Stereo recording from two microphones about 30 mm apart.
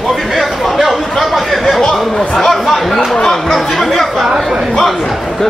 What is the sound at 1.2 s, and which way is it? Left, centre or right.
Chatter, centre.